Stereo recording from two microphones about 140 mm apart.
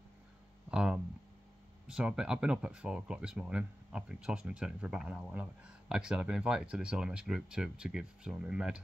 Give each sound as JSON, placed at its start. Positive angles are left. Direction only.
{"t": 0.7, "sound": "speech", "side_deg": -5}